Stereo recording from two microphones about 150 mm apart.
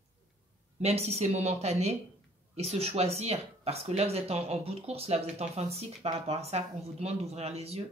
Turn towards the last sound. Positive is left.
turn(degrees=-45)  # may be behind; listen again after turning